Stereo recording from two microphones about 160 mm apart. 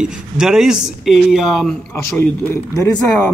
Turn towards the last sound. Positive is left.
turn(degrees=20)  # may be behind; listen again after turning